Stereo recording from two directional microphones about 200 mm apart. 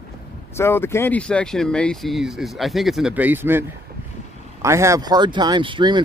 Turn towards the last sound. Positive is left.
turn(degrees=-25)  # may be behind; listen again after turning